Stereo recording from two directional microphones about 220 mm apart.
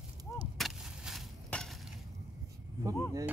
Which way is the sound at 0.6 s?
Centre (ahead or behind).